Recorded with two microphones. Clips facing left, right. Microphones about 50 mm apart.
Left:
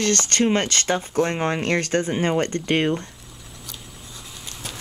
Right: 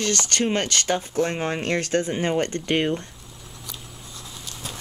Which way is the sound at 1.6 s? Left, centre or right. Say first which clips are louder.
Left 1 dB; left.